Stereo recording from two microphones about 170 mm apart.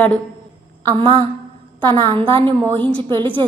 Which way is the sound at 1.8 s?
30° right (ahead or behind).